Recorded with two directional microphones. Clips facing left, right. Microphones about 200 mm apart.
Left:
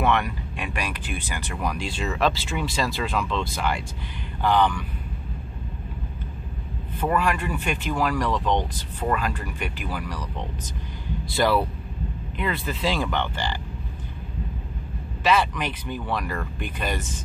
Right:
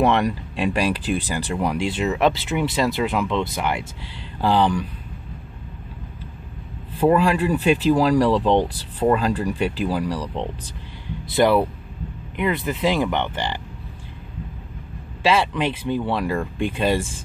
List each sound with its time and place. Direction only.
0.0 s speech: 35° right (ahead or behind)
4.4 s speech: 30° right (ahead or behind)
7.0 s speech: 30° right (ahead or behind)
15.2 s speech: 25° right (ahead or behind)